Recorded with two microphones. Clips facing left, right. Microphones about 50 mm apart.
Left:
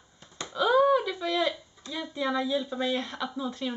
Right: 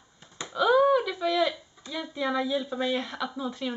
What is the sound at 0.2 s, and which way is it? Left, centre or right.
Speech, centre.